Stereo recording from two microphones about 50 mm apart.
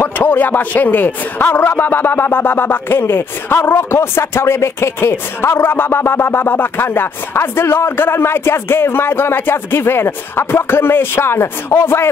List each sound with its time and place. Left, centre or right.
0.0 s speech: left